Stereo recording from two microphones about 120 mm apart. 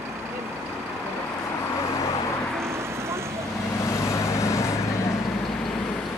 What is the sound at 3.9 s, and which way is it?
Vehicle, 20° left (ahead or behind).